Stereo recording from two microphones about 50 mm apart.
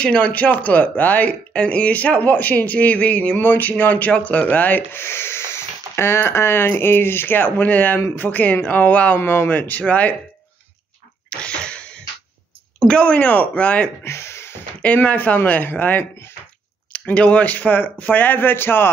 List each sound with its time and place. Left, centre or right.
0.0 s speech: left
5.0 s speech: left
9.2 s speech: left
9.5 s speech: left
11.2 s a sound: left
12.7 s speech: centre
13.1 s speech: left
14.0 s a sound: left
15.0 s speech: left
16.9 s speech: left